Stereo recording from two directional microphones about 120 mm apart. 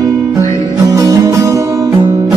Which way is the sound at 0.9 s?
25° right (ahead or behind).